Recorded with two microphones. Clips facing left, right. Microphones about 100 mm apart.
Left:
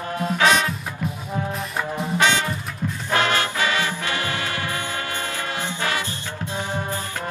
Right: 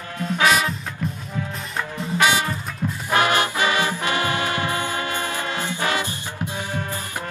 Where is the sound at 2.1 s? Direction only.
10° right (ahead or behind).